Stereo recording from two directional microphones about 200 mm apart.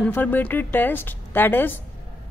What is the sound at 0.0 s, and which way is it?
A woman's voice, 10° left (ahead or behind).